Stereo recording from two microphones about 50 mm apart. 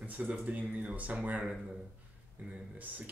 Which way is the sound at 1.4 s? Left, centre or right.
Centre.